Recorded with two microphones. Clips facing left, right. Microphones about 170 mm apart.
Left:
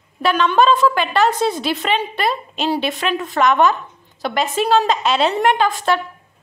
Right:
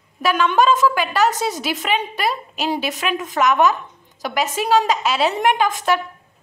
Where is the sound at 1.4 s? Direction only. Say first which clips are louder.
Left 4 dB; 10° right (ahead or behind).